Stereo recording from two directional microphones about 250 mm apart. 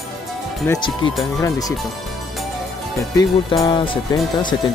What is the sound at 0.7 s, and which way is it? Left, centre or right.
Speech, centre.